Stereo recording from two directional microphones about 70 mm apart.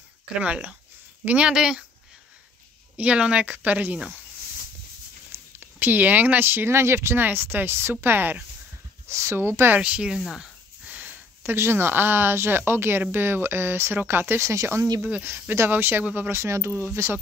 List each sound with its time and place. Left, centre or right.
0.3 s speech: centre
3.0 s speech: centre
5.3 s speech: right
9.1 s speech: right
9.8 s speech: centre
10.9 s a sound: right
11.5 s speech: right
14.4 s speech: right
15.0 s speech: centre
15.2 s speech: right
16.3 s speech: right